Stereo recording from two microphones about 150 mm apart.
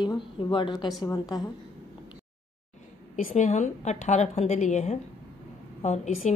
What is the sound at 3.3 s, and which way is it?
A woman's voice, 55° left (ahead or behind).